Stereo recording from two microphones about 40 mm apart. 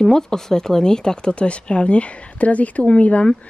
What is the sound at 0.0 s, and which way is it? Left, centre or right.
Speech, centre.